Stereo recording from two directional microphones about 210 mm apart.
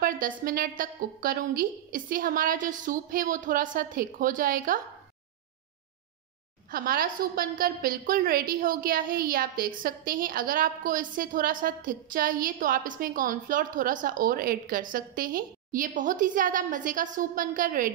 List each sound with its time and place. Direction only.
0.0 s a woman's voice: 40° right (ahead or behind)
6.7 s a woman's voice: 45° right (ahead or behind)